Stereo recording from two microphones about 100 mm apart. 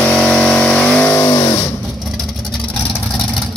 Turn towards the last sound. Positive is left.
turn(degrees=40)  # may be behind; listen again after turning